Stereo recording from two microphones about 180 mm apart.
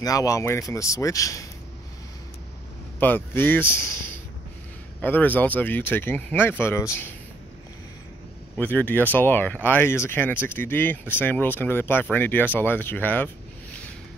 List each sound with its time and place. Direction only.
0.0 s speech: 20° left (ahead or behind)
3.0 s speech: 10° left (ahead or behind)
5.0 s speech: 10° left (ahead or behind)
8.5 s speech: 10° left (ahead or behind)